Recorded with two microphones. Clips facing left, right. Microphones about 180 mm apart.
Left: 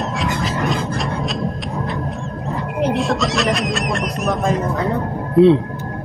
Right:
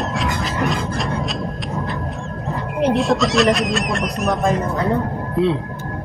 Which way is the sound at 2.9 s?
Centre (ahead or behind).